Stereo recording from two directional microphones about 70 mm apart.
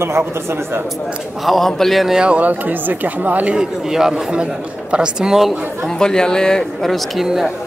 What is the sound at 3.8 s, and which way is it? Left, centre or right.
Speech, centre.